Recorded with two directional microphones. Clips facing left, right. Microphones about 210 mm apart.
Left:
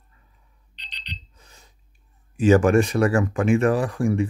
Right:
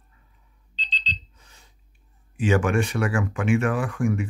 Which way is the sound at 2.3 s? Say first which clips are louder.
Left 6 dB; 40° left (ahead or behind).